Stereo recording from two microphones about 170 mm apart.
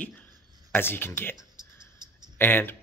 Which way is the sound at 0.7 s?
10° left (ahead or behind).